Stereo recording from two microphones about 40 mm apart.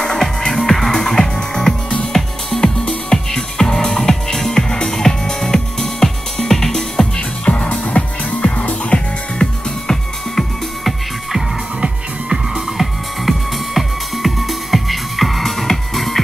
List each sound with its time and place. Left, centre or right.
0.0 s music: centre
7.2 s music: left
7.8 s music: left
10.3 s music: centre
12.5 s music: centre